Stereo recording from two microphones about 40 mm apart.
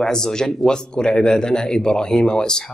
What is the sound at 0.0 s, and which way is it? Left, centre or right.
A man's voice, centre.